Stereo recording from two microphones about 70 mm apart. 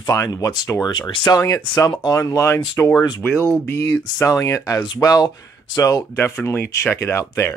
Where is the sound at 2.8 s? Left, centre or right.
Left.